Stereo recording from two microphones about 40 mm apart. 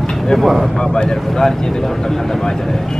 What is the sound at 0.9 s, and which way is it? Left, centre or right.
Speech, centre.